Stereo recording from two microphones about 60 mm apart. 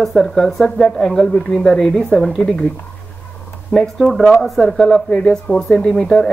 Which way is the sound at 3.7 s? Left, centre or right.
Centre.